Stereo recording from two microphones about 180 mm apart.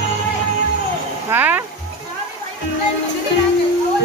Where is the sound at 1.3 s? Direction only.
10° right (ahead or behind).